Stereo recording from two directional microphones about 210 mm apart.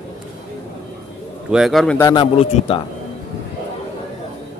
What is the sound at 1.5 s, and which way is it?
Speech, centre (ahead or behind).